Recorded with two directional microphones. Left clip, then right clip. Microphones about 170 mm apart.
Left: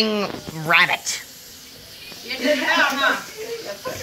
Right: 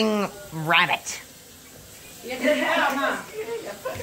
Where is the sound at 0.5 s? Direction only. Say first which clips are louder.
Left 3 dB; centre (ahead or behind).